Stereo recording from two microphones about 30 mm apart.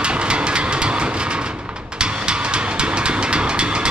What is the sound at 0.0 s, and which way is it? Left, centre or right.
Vehicle, right.